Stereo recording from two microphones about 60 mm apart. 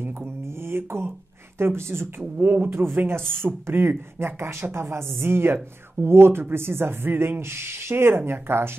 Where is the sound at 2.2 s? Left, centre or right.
Right.